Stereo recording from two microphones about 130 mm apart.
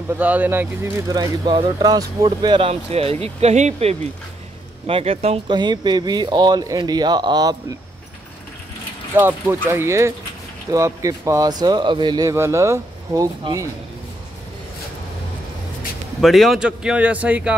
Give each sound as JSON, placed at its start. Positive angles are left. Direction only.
{"t": 0.1, "sound": "a man's voice", "side_deg": -10}
{"t": 1.1, "sound": "speech", "side_deg": -30}
{"t": 2.7, "sound": "speech", "side_deg": -50}
{"t": 4.8, "sound": "speech", "side_deg": -45}
{"t": 5.5, "sound": "speech", "side_deg": -35}
{"t": 9.1, "sound": "speech", "side_deg": -20}
{"t": 12.3, "sound": "speech", "side_deg": -20}
{"t": 16.2, "sound": "a man's voice", "side_deg": 0}